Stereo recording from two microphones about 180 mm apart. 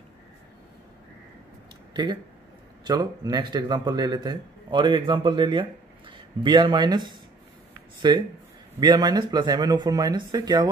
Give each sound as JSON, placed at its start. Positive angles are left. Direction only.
{"t": 2.9, "sound": "a man's voice", "side_deg": -20}